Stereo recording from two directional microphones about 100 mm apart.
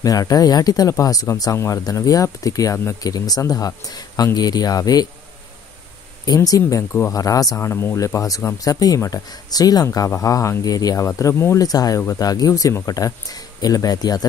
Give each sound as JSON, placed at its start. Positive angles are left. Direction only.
{"t": 0.0, "sound": "speech", "side_deg": 35}
{"t": 6.2, "sound": "speech", "side_deg": 40}
{"t": 9.8, "sound": "speech", "side_deg": 25}